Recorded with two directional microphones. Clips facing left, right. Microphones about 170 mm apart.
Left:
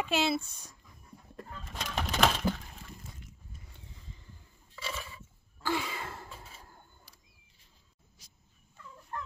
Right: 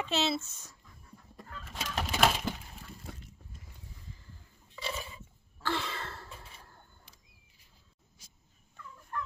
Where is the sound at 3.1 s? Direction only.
65° right (ahead or behind).